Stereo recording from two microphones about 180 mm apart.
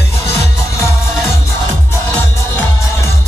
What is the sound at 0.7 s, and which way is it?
Music, 15° left (ahead or behind).